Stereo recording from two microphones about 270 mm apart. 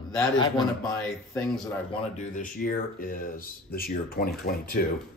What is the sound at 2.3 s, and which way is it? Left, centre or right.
Speech, left.